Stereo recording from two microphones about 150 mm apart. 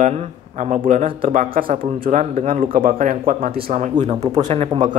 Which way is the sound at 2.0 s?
60° right (ahead or behind).